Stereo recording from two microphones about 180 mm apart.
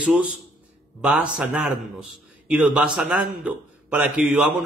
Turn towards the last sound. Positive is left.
turn(degrees=-5)  # may be behind; listen again after turning